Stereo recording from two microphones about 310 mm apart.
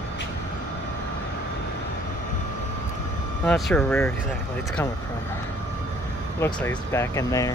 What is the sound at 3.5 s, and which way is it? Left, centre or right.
Speech, centre.